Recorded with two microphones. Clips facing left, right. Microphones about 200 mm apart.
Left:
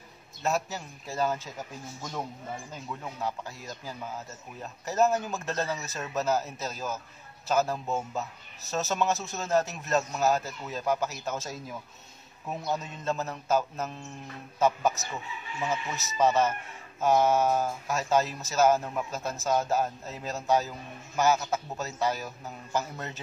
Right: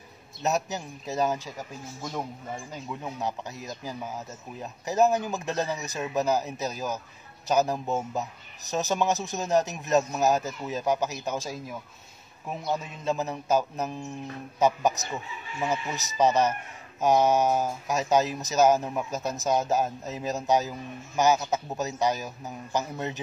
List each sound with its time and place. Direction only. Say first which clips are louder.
0.4 s speech: right 2 dB; 20° right (ahead or behind)
2.7 s speech: right 3 dB; 20° right (ahead or behind)
12.7 s speech: right 4 dB; 10° right (ahead or behind)